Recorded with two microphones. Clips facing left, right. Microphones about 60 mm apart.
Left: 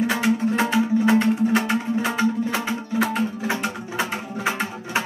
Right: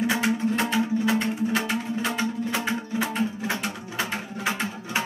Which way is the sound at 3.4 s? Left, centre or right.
Left.